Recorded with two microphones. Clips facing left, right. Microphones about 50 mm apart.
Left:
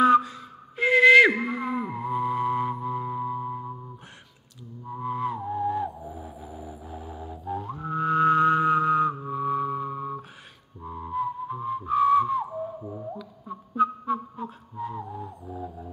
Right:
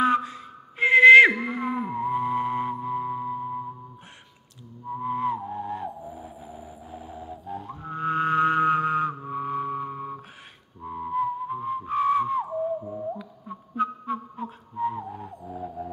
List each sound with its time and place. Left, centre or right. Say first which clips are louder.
0.0 s a sound: left 4 dB; centre
2.8 s music: right 1 dB; centre
4.8 s music: right 2 dB; centre
8.0 s music: left 2 dB; right
10.8 s whistling: right 3 dB; centre
13.5 s a sound: left 3 dB; centre
15.0 s didgeridoo: even; right
15.4 s music: right 4 dB; right